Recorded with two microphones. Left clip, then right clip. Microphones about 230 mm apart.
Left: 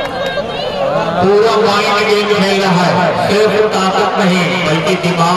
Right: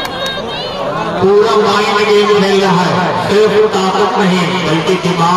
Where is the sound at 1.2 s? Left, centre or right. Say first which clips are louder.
Right 2 dB; left.